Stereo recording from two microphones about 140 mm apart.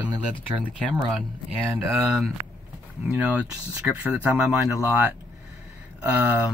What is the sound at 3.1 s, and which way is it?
Speech, 10° right (ahead or behind).